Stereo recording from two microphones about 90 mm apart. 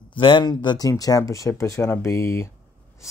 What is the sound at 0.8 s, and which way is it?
Speech, 40° left (ahead or behind).